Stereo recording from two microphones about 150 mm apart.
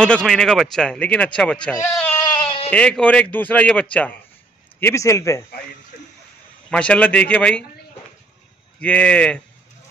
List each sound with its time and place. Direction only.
0.0 s speech: 5° left (ahead or behind)
2.2 s bleat: 35° left (ahead or behind)
2.7 s a man's voice: 5° left (ahead or behind)
6.7 s speech: 5° left (ahead or behind)
8.8 s speech: 10° left (ahead or behind)